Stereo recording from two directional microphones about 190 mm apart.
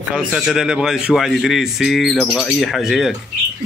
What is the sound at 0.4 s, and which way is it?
Speech, 5° right (ahead or behind).